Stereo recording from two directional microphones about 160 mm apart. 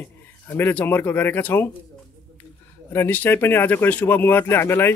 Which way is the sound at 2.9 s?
10° left (ahead or behind).